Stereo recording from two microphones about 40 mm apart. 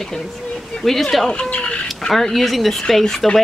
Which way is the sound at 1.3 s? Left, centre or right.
Left.